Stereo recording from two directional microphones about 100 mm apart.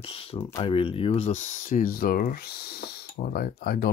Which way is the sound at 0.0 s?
75° left (ahead or behind).